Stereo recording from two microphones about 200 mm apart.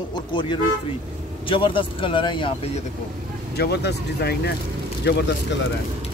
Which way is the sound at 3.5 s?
55° left (ahead or behind).